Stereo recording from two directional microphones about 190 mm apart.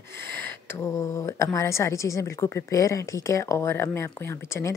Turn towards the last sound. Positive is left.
turn(degrees=15)  # may be behind; listen again after turning